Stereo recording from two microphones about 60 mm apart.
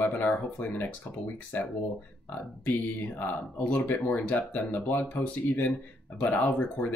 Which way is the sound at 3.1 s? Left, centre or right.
Left.